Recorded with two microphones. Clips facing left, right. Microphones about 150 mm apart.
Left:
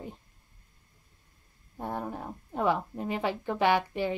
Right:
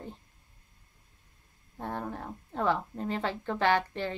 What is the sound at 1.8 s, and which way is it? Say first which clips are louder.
A woman's voice: left 1 dB; 10° left (ahead or behind).